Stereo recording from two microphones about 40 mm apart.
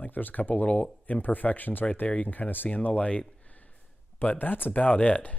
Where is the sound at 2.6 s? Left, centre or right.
Left.